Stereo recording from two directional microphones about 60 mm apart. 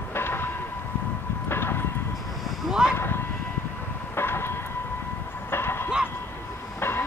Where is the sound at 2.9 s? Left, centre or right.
Left.